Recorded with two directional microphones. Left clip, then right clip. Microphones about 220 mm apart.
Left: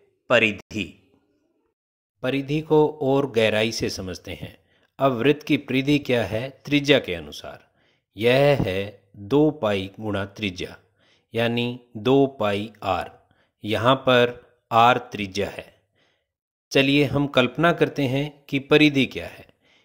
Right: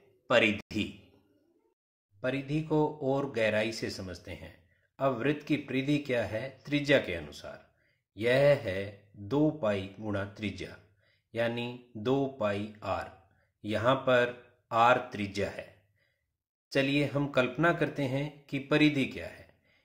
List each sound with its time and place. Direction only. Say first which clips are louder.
0.3 s speech: left 7 dB; 30° left (ahead or behind)
2.1 s speech: left 8 dB; 40° left (ahead or behind)